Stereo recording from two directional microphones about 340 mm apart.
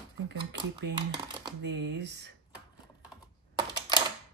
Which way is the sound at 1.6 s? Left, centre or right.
Right.